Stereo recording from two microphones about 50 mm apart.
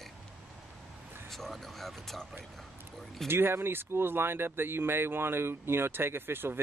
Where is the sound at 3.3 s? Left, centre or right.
Right.